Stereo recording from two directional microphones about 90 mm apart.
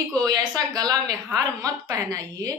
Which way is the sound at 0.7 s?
45° right (ahead or behind).